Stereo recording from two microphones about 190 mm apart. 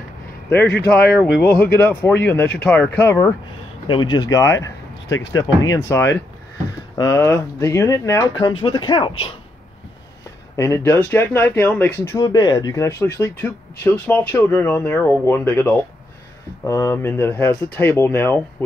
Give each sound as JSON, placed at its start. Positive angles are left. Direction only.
{"t": 0.7, "sound": "speech", "side_deg": 60}
{"t": 1.6, "sound": "speech", "side_deg": 10}
{"t": 3.8, "sound": "speech", "side_deg": 25}
{"t": 10.5, "sound": "speech", "side_deg": 15}